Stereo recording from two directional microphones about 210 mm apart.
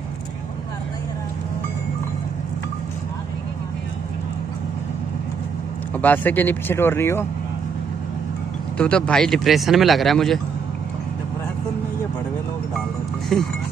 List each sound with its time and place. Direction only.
5.9 s speech: 10° left (ahead or behind)
8.7 s speech: 5° left (ahead or behind)
13.3 s speech: centre (ahead or behind)